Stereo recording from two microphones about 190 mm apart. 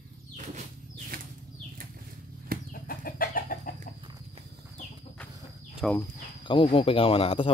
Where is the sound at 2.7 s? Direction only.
50° left (ahead or behind).